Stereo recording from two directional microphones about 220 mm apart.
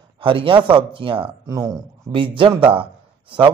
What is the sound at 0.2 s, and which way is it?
Speech, 25° right (ahead or behind).